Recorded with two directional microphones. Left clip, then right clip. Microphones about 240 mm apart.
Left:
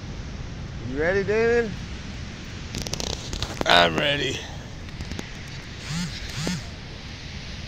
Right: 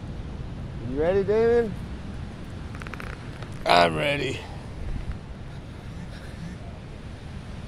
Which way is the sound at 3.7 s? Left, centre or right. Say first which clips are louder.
Left 1 dB; centre.